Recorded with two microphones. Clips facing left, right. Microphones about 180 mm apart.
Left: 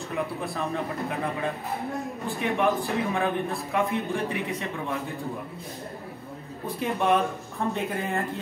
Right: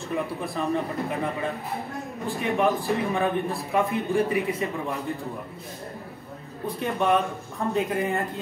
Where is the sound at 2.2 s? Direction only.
Centre (ahead or behind).